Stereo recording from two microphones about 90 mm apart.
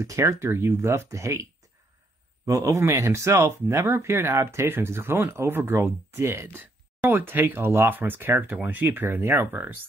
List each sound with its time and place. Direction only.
0.3 s speech: 30° right (ahead or behind)